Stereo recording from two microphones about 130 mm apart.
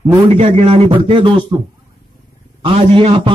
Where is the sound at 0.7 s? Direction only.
45° right (ahead or behind).